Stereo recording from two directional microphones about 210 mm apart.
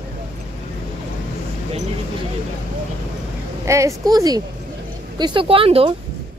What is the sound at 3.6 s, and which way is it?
A woman's voice, 15° right (ahead or behind).